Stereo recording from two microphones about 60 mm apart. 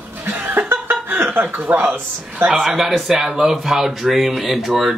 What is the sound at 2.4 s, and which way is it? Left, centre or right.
Speech, centre.